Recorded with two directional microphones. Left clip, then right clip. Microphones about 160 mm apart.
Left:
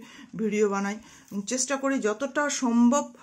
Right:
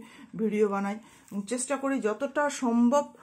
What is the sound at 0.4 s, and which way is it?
Speech, 30° left (ahead or behind).